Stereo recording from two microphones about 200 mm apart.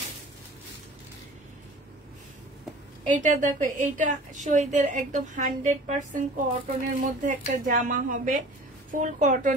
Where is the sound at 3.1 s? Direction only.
40° right (ahead or behind).